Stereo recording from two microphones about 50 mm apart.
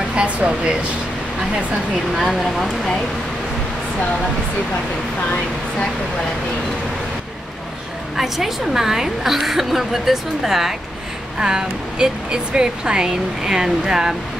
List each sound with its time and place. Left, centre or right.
0.1 s speech: right
2.1 s a woman's voice: centre
8.2 s a woman's voice: centre